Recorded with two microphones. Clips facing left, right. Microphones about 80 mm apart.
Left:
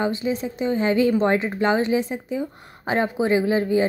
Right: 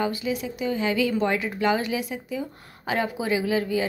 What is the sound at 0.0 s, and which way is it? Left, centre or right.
Speech, left.